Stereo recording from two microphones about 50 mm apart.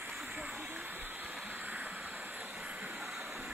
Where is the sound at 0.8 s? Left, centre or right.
Right.